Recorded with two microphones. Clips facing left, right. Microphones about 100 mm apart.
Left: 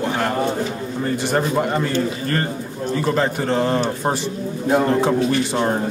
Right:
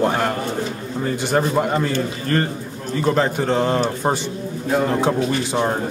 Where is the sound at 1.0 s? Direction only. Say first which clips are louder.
Right 1 dB; centre (ahead or behind).